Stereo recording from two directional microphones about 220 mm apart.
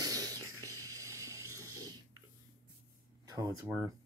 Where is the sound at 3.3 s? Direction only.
15° right (ahead or behind).